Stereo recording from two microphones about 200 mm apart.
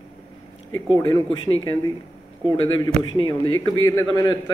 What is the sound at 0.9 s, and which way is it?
A man's voice, 20° left (ahead or behind).